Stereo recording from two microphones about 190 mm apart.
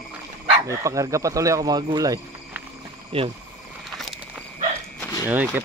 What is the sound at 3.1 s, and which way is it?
Speech, 30° right (ahead or behind).